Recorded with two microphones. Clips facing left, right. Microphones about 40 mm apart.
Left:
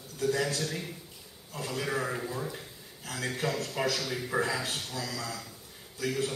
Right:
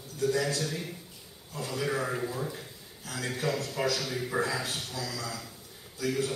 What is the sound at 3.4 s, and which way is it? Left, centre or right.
Speech, centre.